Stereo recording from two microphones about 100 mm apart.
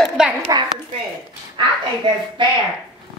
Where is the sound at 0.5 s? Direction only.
40° right (ahead or behind).